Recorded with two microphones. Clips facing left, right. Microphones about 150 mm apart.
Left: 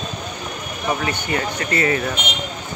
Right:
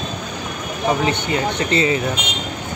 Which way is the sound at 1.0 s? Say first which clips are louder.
Right 3 dB; 20° right (ahead or behind).